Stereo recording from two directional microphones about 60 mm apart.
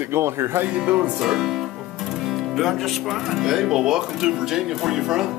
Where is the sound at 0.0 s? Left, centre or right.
Right.